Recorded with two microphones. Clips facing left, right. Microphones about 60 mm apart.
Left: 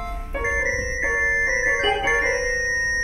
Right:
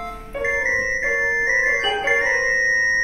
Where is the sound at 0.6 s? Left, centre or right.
Right.